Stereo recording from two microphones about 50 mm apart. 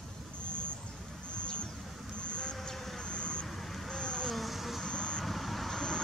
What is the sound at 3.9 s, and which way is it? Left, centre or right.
Vehicle, centre.